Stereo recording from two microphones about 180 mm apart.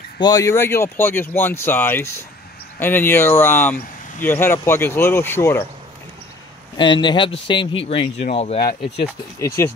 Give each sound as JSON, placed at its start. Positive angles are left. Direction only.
{"t": 0.2, "sound": "speech", "side_deg": 20}
{"t": 6.8, "sound": "speech", "side_deg": 25}
{"t": 9.6, "sound": "speech", "side_deg": 15}